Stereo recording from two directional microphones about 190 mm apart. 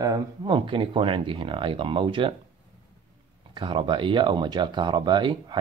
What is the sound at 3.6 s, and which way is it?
Speech, 25° right (ahead or behind).